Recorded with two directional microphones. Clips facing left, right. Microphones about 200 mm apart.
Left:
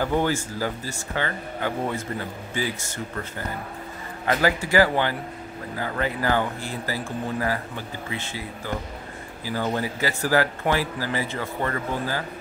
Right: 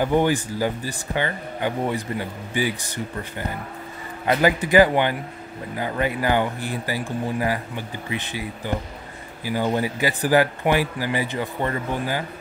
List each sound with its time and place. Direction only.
0.0 s a man's voice: 15° right (ahead or behind)